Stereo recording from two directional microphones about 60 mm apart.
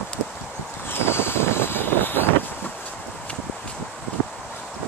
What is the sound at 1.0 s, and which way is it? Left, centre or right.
Vehicle, left.